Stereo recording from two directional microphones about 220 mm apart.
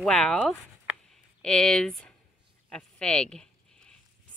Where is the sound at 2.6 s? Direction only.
5° left (ahead or behind).